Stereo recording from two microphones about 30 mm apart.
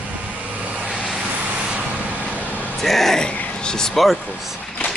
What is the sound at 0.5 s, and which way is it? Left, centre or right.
Vehicle, right.